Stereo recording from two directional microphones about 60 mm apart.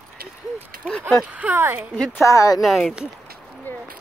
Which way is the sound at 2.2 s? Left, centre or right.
Left.